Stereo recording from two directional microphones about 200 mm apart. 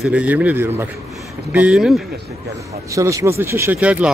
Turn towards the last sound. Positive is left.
turn(degrees=-5)  # may be behind; listen again after turning